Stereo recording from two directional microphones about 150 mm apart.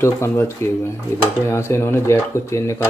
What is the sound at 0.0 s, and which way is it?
Speech, 15° left (ahead or behind).